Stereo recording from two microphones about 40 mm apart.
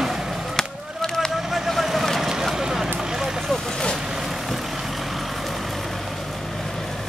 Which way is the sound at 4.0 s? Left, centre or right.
Centre.